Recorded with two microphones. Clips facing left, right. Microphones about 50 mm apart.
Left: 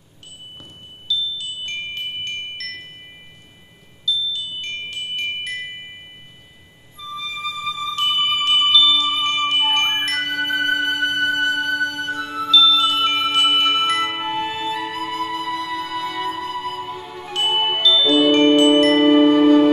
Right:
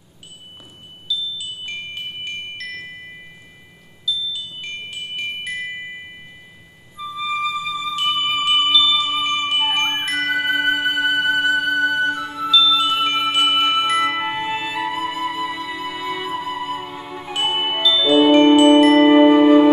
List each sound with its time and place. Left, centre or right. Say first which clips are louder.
1.1 s wind chime: left 2 dB; centre
4.0 s chime: left 2 dB; centre
7.0 s music: right 3 dB; centre
8.5 s chime: left 1 dB; centre
10.2 s music: right 2 dB; centre
17.5 s glockenspiel: left 2 dB; centre
19.0 s chime: right 2 dB; centre